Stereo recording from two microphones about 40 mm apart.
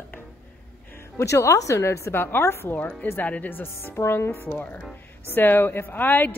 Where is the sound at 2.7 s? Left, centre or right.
Left.